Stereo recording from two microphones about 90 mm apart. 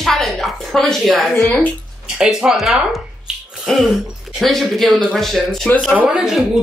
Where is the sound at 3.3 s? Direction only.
10° right (ahead or behind).